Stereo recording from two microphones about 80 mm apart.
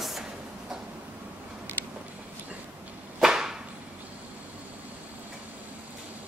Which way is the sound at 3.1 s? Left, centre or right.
Centre.